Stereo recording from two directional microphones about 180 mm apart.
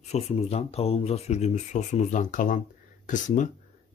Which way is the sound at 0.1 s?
35° left (ahead or behind).